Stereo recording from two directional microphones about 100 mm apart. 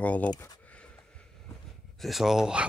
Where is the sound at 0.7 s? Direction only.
10° left (ahead or behind).